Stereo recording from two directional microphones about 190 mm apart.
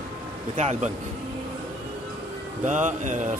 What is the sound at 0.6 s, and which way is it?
Speech, 35° right (ahead or behind).